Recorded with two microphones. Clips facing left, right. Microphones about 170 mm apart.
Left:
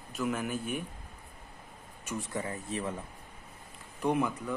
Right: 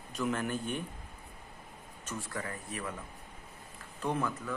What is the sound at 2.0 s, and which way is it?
Speech, 20° left (ahead or behind).